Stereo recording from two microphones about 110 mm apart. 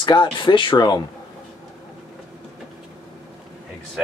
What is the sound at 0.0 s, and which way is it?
Speech, 45° left (ahead or behind).